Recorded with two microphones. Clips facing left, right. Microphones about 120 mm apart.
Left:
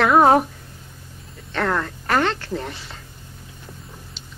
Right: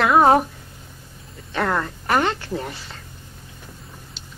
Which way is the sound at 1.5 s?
10° right (ahead or behind).